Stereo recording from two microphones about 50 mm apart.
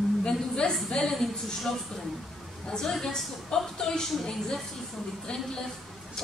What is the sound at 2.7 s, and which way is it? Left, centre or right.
A woman's voice, centre.